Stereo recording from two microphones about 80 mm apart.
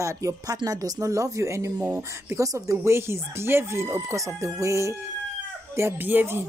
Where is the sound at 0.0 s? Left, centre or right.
Right.